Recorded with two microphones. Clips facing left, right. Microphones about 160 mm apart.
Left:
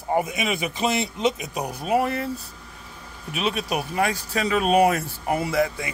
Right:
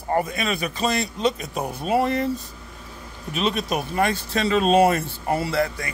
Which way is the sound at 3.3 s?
10° left (ahead or behind).